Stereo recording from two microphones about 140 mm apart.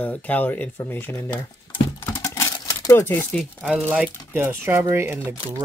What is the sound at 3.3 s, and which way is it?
Speech, 5° left (ahead or behind).